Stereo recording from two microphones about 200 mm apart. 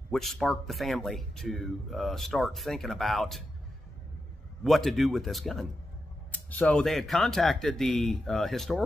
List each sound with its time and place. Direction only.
0.1 s speech: centre (ahead or behind)
4.6 s speech: centre (ahead or behind)